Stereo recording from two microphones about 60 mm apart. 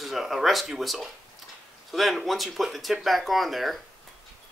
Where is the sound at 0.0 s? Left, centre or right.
Centre.